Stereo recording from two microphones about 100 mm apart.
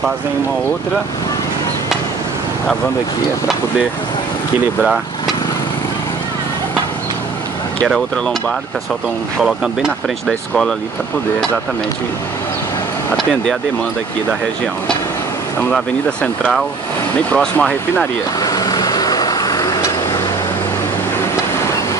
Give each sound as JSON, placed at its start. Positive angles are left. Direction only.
{"t": 4.8, "sound": "speech", "side_deg": 0}
{"t": 7.9, "sound": "speech", "side_deg": 0}
{"t": 13.1, "sound": "speech", "side_deg": 5}
{"t": 17.3, "sound": "speech", "side_deg": 10}
{"t": 18.4, "sound": "vehicle", "side_deg": 40}